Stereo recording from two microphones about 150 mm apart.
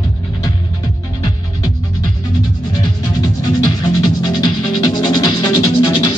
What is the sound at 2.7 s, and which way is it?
Music, 25° left (ahead or behind).